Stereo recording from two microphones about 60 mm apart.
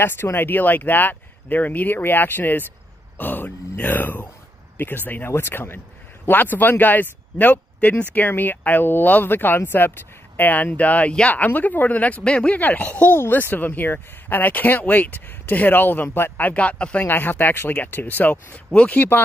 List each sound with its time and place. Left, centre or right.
0.0 s speech: left; by 17.0 s centre
17.0 s speech: left